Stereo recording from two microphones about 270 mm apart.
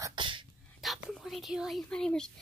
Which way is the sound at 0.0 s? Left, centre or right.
Centre.